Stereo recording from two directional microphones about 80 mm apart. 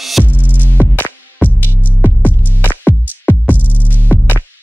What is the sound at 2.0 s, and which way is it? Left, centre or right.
Music, left.